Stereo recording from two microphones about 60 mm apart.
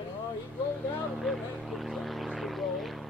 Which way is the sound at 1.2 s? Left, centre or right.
Centre.